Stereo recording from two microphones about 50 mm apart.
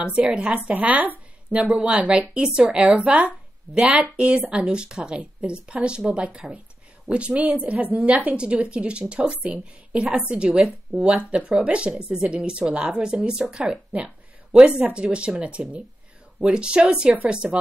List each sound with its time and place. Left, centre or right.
0.0 s a woman's voice: right